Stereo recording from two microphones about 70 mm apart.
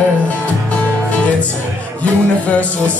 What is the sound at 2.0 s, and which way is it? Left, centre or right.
Music, centre.